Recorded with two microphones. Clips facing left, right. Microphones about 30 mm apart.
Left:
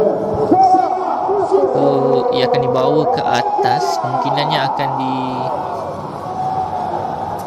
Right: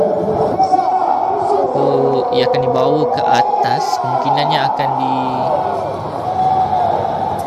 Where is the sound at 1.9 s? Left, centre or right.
Centre.